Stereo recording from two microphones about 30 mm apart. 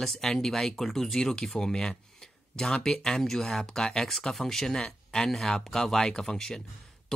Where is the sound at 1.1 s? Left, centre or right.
Left.